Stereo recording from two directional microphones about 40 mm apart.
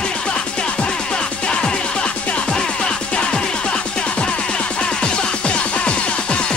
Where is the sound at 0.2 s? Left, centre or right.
Left.